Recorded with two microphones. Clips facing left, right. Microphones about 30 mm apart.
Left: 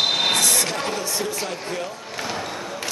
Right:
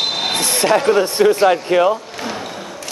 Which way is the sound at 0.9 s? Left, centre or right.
Right.